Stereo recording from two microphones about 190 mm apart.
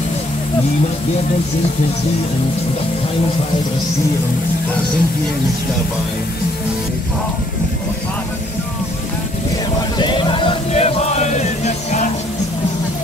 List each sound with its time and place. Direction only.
10.0 s music: 25° left (ahead or behind)